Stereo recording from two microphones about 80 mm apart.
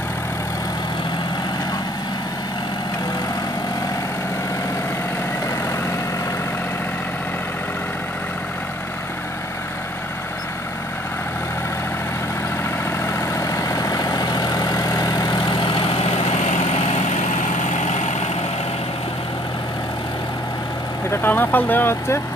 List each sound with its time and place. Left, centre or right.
13.0 s vehicle: left
21.1 s speech: left